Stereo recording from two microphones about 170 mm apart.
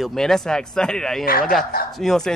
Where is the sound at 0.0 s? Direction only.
Centre (ahead or behind).